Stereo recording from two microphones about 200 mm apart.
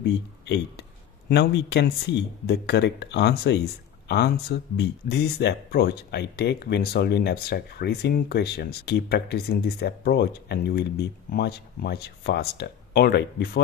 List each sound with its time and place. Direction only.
0.0 s speech: 60° left (ahead or behind); by 5.2 s 45° left (ahead or behind)
5.4 s speech: 55° left (ahead or behind)